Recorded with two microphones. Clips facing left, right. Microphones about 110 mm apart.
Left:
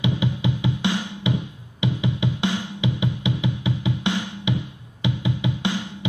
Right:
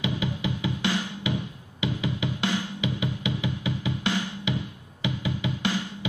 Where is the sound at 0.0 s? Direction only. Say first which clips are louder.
Left 5 dB; 20° left (ahead or behind).